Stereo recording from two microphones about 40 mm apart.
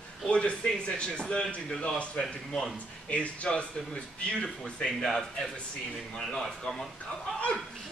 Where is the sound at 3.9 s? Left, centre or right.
Centre.